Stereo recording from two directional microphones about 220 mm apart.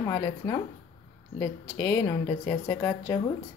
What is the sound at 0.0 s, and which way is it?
Speech, 15° left (ahead or behind).